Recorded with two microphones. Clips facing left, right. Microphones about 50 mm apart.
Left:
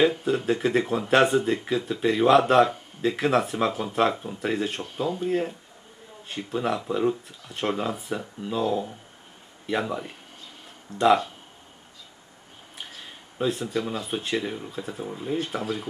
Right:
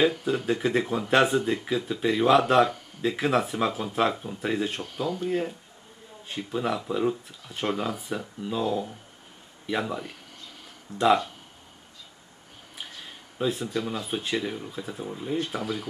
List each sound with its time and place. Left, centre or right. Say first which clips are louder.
0.5 s speech: left 2 dB; centre
12.7 s speech: even; centre